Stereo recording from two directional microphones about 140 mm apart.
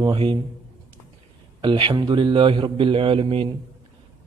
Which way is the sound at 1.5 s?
40° right (ahead or behind).